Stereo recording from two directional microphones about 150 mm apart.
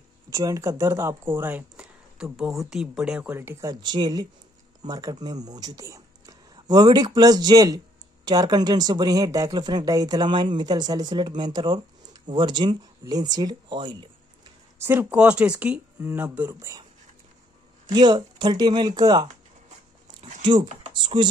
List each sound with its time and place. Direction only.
0.3 s speech: 20° right (ahead or behind)
3.8 s speech: 30° right (ahead or behind)
14.8 s speech: 15° right (ahead or behind)
17.9 s speech: 30° right (ahead or behind)
20.9 s speech: 30° right (ahead or behind)